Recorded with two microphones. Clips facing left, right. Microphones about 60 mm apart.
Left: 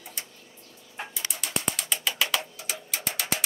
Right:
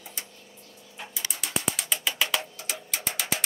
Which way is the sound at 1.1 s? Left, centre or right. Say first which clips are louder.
Right 2 dB; centre.